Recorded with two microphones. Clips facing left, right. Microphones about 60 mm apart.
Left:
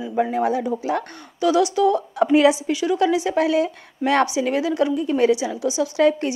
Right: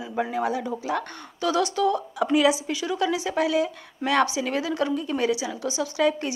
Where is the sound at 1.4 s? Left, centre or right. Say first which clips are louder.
Left 5 dB; centre.